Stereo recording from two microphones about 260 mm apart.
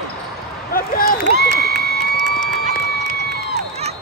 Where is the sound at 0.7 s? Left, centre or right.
Left.